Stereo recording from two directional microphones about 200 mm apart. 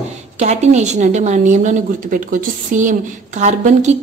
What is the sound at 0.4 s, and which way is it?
Speech, 35° right (ahead or behind).